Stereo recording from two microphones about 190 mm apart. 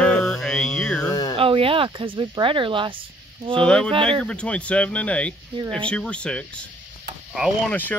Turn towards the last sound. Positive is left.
turn(degrees=0)  # may be behind; listen again after turning